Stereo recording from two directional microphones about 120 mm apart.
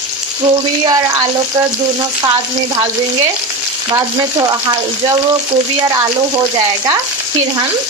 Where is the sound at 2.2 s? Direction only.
40° right (ahead or behind).